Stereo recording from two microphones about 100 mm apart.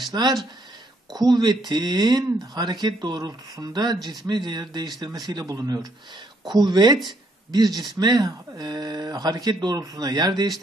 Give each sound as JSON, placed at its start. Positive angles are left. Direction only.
{"t": 0.0, "sound": "speech", "side_deg": -40}